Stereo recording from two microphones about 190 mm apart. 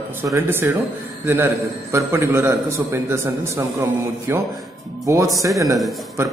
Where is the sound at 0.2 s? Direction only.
15° right (ahead or behind).